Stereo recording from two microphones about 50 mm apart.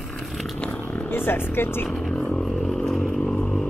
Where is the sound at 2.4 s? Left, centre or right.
Centre.